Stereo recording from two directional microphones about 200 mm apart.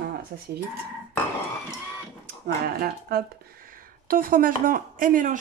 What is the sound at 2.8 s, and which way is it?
Speech, 50° right (ahead or behind).